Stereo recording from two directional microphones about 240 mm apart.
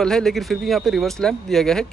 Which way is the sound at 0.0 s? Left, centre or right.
Centre.